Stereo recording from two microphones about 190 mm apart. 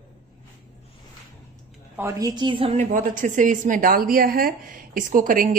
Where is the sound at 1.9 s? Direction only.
15° right (ahead or behind).